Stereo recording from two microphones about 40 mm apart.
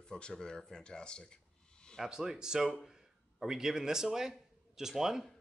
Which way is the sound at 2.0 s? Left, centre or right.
Centre.